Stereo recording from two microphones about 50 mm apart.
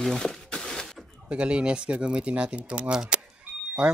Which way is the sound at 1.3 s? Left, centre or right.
Right.